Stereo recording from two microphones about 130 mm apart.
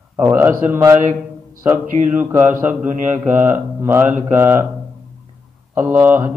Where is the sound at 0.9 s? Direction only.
85° right.